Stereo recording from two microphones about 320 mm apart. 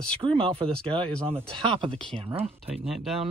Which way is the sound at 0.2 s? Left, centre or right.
Centre.